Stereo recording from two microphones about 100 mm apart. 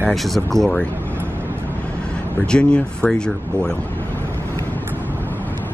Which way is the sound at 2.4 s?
10° left (ahead or behind).